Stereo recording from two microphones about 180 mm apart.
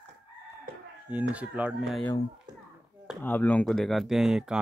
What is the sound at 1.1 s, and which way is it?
Speech, 10° right (ahead or behind).